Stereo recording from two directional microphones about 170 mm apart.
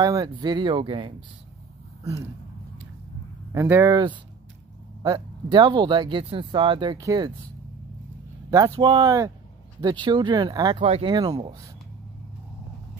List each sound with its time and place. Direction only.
0.0 s speech: 20° right (ahead or behind)
3.5 s speech: 15° right (ahead or behind)
8.5 s speech: 20° right (ahead or behind)
10.8 s speech: 35° right (ahead or behind)